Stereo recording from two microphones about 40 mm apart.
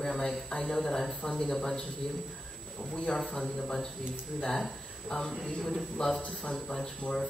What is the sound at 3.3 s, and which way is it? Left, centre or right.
Speech, centre.